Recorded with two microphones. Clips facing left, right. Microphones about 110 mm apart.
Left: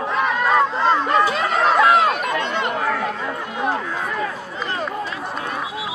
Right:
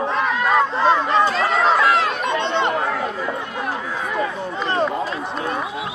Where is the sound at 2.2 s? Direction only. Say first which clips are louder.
Right 2 dB; 25° right (ahead or behind).